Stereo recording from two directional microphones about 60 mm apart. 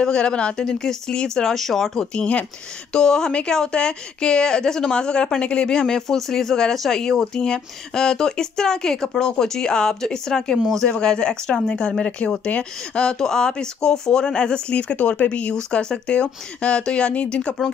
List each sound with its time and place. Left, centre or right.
0.0 s speech: centre
2.1 s speech: left
2.9 s speech: centre